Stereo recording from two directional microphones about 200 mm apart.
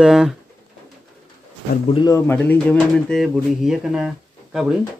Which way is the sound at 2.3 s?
5° left (ahead or behind).